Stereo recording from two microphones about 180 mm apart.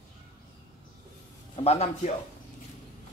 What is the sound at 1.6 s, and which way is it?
Speech, 35° left (ahead or behind).